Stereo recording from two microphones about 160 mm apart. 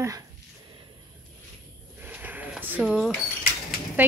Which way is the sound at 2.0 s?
10° right (ahead or behind).